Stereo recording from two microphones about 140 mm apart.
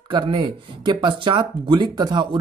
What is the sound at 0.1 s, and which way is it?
Speech, 35° right (ahead or behind).